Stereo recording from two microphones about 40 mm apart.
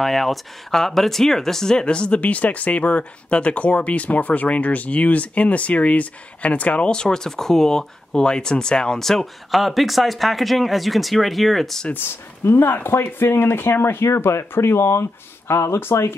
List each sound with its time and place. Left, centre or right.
0.0 s speech: centre; by 6.9 s left
6.9 s speech: centre
9.0 s speech: centre
11.9 s speech: left